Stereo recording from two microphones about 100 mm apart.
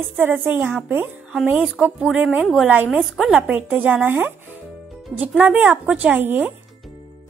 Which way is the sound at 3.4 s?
15° right (ahead or behind).